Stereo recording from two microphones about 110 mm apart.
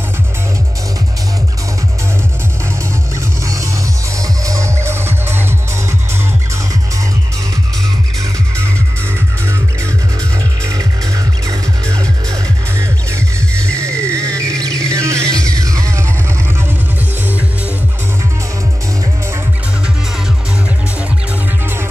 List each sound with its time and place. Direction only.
4.2 s music: 30° right (ahead or behind)
10.6 s music: 30° right (ahead or behind)
13.7 s music: 25° right (ahead or behind)